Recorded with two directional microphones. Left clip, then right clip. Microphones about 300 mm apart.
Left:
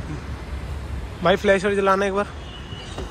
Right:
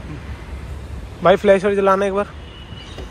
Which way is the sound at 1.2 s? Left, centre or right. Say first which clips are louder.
Right 5 dB; centre.